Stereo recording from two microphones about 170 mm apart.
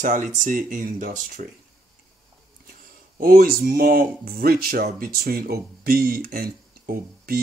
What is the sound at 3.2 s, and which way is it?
Speech, 55° right (ahead or behind).